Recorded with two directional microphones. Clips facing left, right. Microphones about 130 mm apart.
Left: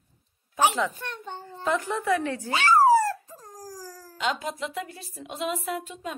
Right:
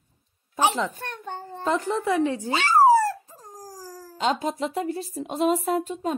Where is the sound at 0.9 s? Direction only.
50° right (ahead or behind).